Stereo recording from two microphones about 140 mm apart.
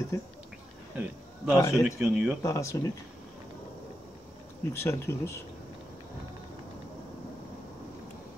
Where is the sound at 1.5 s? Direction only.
20° left (ahead or behind).